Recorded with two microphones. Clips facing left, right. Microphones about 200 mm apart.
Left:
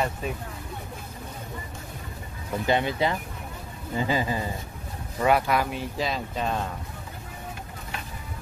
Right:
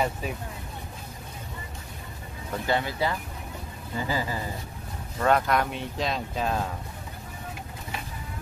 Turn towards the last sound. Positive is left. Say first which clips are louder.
# even
turn(degrees=0)  # may be behind; listen again after turning